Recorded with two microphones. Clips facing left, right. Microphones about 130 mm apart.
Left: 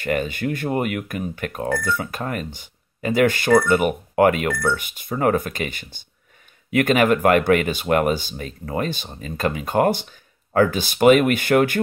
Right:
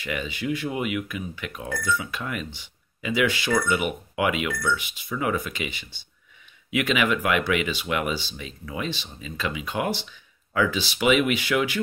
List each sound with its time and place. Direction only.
0.0 s speech: 50° left (ahead or behind)